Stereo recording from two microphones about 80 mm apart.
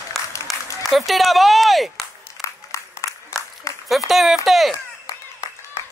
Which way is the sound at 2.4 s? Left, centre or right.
Left.